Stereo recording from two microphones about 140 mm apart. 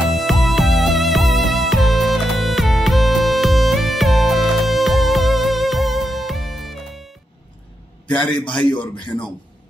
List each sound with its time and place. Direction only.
0.1 s music: centre (ahead or behind)
8.1 s a man's voice: 35° left (ahead or behind)